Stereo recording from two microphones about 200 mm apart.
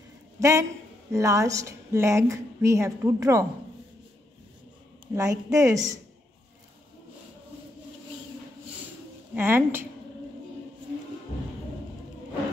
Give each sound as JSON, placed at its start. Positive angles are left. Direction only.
{"t": 0.4, "sound": "a man's voice", "side_deg": -15}
{"t": 5.1, "sound": "a woman's voice", "side_deg": -15}
{"t": 9.3, "sound": "a woman's voice", "side_deg": -10}